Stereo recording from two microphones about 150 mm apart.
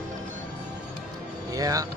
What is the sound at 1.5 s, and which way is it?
Music, 25° right (ahead or behind).